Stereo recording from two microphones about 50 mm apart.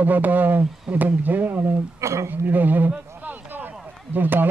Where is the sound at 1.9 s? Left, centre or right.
Right.